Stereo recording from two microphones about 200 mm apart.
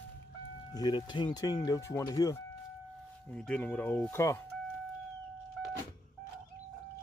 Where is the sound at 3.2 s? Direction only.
5° left (ahead or behind).